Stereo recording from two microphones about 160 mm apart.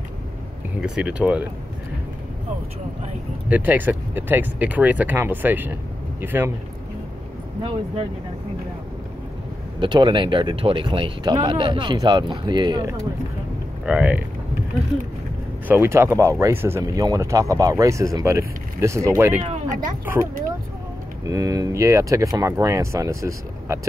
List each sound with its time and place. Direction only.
0.7 s speech: 5° right (ahead or behind)
3.4 s speech: 10° right (ahead or behind)
9.8 s speech: 30° right (ahead or behind)
13.8 s speech: 10° right (ahead or behind)
15.7 s speech: 15° right (ahead or behind)
19.4 s a sound: 45° right (ahead or behind)
21.2 s speech: 20° right (ahead or behind)